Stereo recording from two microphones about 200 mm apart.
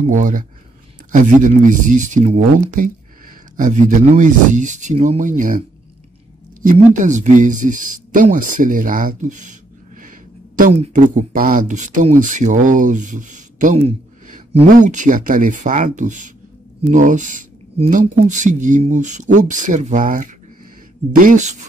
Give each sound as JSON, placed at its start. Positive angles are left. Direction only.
{"t": 0.0, "sound": "speech", "side_deg": -40}
{"t": 6.6, "sound": "speech", "side_deg": -40}